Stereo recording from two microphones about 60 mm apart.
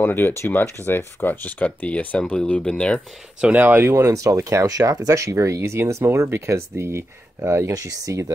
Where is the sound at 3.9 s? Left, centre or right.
Right.